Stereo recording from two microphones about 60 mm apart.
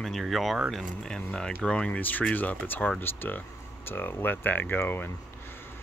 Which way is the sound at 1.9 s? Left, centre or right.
Left.